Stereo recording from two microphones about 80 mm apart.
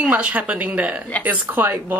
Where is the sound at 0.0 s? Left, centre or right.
Centre.